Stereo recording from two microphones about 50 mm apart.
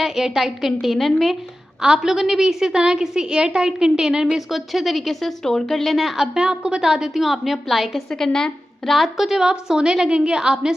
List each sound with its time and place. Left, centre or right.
0.0 s a woman's voice: centre
1.8 s a woman's voice: centre
5.4 s speech: centre
6.3 s a woman's voice: centre
8.2 s speech: centre
8.9 s speech: centre
9.5 s a woman's voice: centre